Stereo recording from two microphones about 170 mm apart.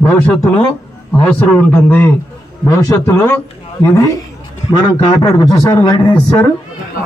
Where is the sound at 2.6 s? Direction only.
20° left (ahead or behind).